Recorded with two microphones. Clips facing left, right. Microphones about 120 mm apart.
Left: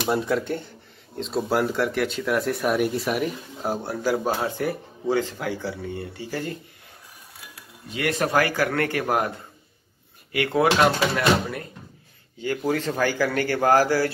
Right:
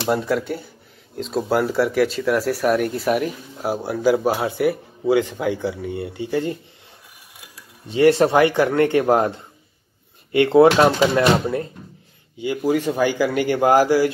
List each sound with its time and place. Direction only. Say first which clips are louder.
0.1 s speech: right 3 dB; centre (ahead or behind); by 6.6 s 20° right (ahead or behind)
7.9 s speech: right 9 dB; 30° right (ahead or behind)
12.4 s speech: right 4 dB; 15° right (ahead or behind)